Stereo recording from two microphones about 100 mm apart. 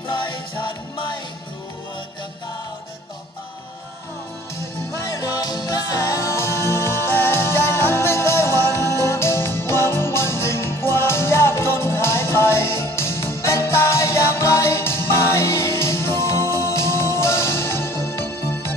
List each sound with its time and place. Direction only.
0.1 s music: 50° left (ahead or behind)
5.0 s music: 35° left (ahead or behind)